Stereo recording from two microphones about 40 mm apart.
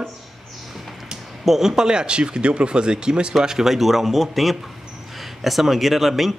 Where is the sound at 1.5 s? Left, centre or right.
Centre.